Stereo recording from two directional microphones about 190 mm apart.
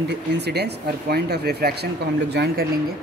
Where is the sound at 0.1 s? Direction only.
60° right (ahead or behind).